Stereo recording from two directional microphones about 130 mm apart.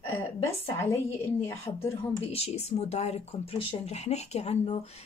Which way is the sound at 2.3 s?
55° left (ahead or behind).